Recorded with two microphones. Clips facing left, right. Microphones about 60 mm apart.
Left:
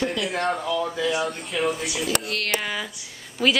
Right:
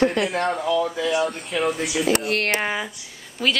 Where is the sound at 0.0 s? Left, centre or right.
Right.